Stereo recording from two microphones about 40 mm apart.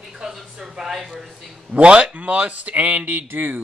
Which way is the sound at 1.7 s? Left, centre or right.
Right.